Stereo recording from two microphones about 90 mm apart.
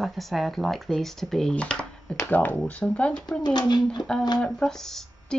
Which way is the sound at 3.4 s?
55° left (ahead or behind).